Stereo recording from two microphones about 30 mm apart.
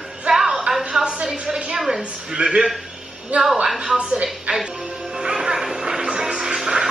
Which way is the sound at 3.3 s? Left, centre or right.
Right.